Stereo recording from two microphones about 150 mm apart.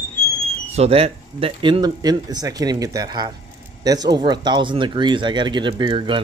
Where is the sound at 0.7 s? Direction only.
40° right (ahead or behind).